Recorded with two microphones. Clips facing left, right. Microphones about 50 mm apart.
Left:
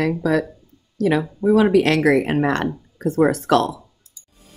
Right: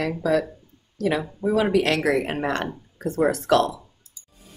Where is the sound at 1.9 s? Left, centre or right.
Left.